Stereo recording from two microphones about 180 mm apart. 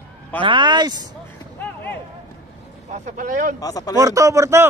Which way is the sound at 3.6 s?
20° left (ahead or behind).